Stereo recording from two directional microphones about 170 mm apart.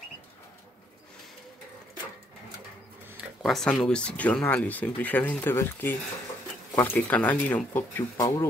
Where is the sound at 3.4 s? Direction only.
Centre (ahead or behind).